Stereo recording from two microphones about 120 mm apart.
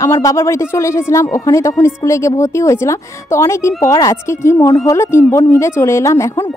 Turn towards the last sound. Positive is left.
turn(degrees=25)  # may be behind; listen again after turning